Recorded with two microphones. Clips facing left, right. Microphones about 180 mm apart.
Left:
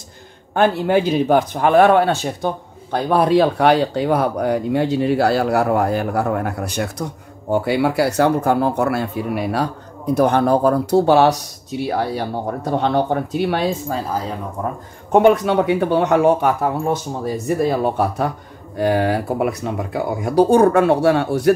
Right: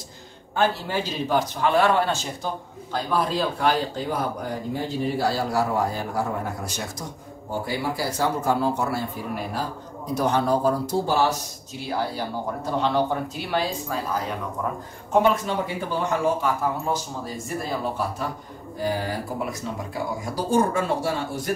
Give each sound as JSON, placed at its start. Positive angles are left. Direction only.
{"t": 0.6, "sound": "speech", "side_deg": 60}
{"t": 14.6, "sound": "speech", "side_deg": 35}
{"t": 15.0, "sound": "speech", "side_deg": 60}